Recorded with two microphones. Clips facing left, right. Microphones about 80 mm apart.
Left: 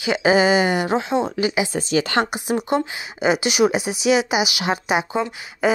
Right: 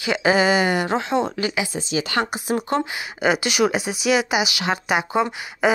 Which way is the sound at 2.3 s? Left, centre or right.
Centre.